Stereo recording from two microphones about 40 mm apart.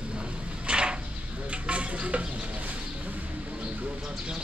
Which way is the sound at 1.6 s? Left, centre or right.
Right.